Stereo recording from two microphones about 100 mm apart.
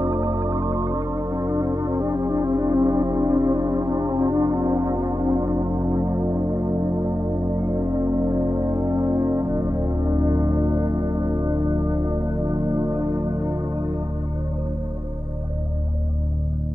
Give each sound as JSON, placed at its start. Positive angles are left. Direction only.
{"t": 0.0, "sound": "music", "side_deg": -35}